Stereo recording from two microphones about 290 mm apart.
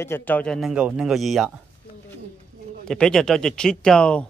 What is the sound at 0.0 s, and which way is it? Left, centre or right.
A man's voice, centre.